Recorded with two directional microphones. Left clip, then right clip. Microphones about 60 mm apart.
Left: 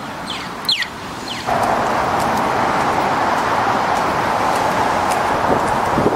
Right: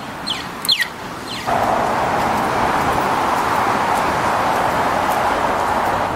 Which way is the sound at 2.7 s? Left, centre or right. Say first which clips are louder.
Left 1 dB; centre.